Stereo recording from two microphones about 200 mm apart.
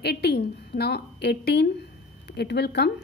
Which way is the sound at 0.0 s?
55° left (ahead or behind).